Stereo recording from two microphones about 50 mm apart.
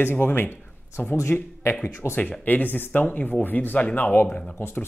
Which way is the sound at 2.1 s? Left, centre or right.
Left.